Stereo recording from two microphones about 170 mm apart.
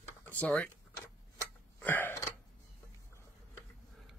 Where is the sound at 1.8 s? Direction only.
10° left (ahead or behind).